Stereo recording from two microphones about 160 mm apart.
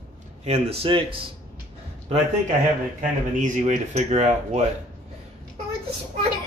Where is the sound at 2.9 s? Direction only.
55° right (ahead or behind).